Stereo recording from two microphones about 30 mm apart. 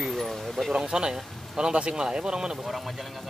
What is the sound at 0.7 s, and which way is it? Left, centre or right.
Speech, right.